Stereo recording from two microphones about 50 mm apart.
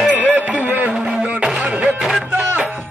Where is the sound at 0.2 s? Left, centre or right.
Right.